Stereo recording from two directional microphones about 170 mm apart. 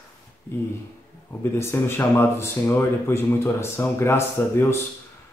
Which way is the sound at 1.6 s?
15° left (ahead or behind).